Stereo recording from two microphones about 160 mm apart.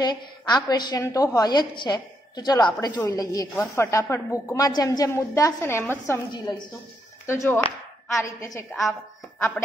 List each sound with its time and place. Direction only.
0.0 s a woman's voice: 25° left (ahead or behind)
7.2 s a woman's voice: 15° left (ahead or behind)